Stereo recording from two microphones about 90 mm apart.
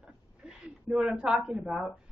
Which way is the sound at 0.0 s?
5° right (ahead or behind).